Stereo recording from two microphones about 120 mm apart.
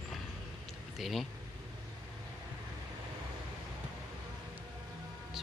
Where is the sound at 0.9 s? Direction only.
Centre (ahead or behind).